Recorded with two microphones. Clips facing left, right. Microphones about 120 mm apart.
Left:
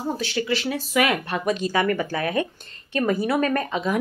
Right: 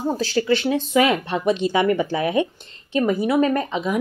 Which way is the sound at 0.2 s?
35° right (ahead or behind).